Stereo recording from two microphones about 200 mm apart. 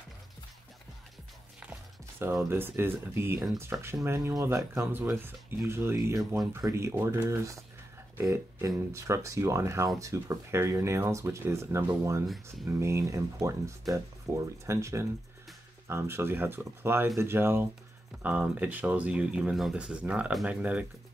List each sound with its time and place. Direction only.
1.6 s speech: 10° right (ahead or behind)